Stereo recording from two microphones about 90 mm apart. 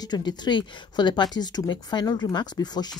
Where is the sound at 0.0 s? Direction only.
50° left (ahead or behind).